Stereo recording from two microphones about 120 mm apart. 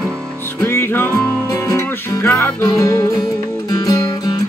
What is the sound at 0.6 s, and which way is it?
Music, 20° left (ahead or behind).